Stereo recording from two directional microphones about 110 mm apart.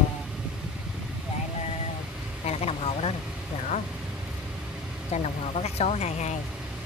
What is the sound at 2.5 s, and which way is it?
Vehicle, 70° left (ahead or behind).